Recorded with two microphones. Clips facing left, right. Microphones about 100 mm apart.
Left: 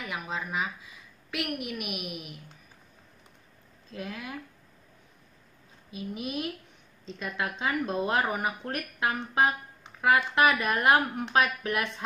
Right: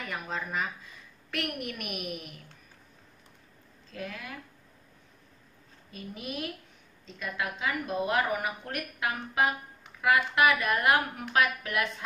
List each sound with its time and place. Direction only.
0.0 s a woman's voice: 5° left (ahead or behind)
3.9 s speech: 20° left (ahead or behind)
5.9 s speech: 15° left (ahead or behind)